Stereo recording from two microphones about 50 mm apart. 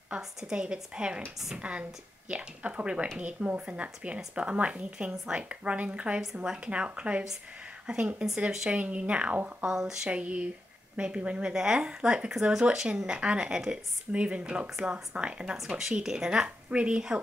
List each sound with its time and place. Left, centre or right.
0.4 s a woman's voice: centre
8.7 s speech: right
9.7 s a woman's voice: centre
10.0 s a woman's voice: right
16.4 s speech: right